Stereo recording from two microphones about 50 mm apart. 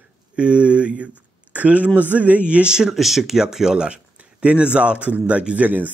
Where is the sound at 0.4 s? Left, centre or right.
Right.